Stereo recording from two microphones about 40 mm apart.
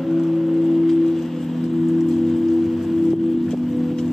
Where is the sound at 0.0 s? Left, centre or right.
Centre.